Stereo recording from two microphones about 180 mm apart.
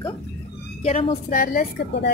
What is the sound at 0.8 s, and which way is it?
Speech, 35° left (ahead or behind).